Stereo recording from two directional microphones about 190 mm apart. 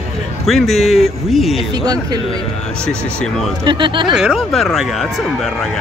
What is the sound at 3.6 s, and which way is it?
Speech, 25° right (ahead or behind).